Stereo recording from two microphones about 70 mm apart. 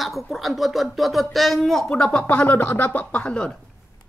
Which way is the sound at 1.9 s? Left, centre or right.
Centre.